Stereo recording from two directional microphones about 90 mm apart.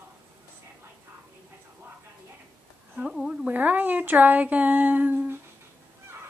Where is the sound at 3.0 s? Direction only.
5° right (ahead or behind).